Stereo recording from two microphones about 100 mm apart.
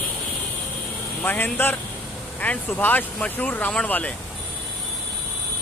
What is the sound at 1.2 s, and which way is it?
Speech, 20° left (ahead or behind).